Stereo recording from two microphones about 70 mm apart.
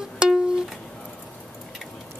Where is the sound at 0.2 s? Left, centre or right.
Centre.